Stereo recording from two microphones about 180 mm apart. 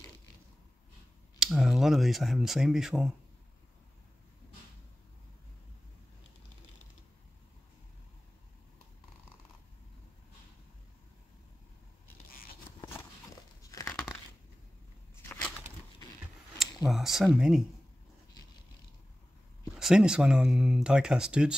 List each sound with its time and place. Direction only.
1.4 s speech: centre (ahead or behind)
13.6 s crumpling: 20° left (ahead or behind)
16.9 s speech: centre (ahead or behind)
19.8 s speech: 5° right (ahead or behind)